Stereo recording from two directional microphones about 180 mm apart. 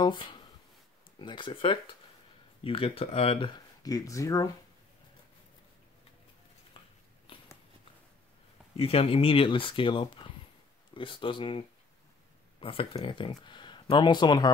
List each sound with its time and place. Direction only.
0.0 s speech: 25° left (ahead or behind)
7.3 s a sound: 30° left (ahead or behind)
8.7 s speech: 35° left (ahead or behind)